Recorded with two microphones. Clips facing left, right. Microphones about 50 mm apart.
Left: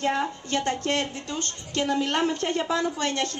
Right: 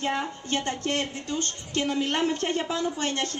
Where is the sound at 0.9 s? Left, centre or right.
Right.